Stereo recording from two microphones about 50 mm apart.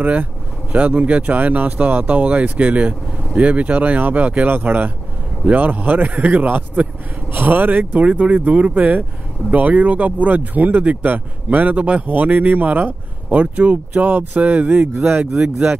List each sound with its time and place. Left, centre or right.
0.0 s speech: right
4.5 s speech: right